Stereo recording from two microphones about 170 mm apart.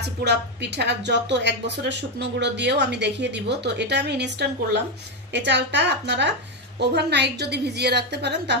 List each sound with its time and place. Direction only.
0.2 s a woman's voice: 80° right
6.8 s a woman's voice: 80° right